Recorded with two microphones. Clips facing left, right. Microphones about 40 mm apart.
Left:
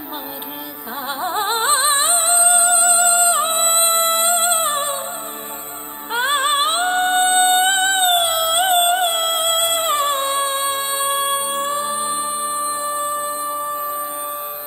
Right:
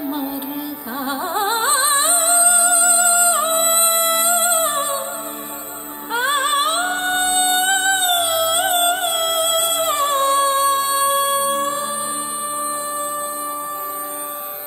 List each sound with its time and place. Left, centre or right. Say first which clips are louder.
1.2 s music: left 1 dB; left
6.1 s music: even; left